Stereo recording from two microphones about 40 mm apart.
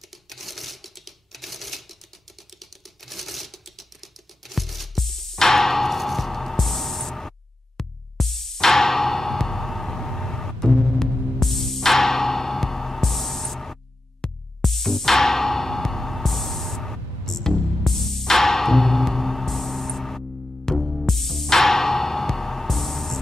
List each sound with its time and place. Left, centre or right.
0.3 s typewriter: centre
10.7 s music: left
11.3 s music: centre